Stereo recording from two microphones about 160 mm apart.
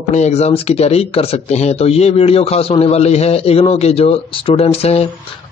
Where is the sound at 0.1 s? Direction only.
45° left (ahead or behind).